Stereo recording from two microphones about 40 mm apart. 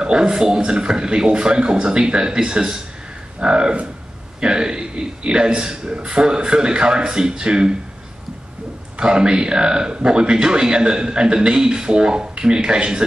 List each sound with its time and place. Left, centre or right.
0.0 s a man's voice: right
8.9 s a man's voice: right